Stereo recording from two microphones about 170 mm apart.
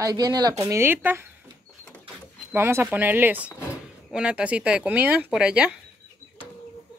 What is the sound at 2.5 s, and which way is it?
Speech, 15° right (ahead or behind).